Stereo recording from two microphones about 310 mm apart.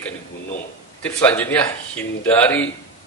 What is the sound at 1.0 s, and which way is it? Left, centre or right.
A man's voice, centre.